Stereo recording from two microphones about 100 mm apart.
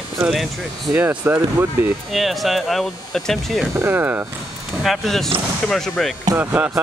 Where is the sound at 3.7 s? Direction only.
25° right (ahead or behind).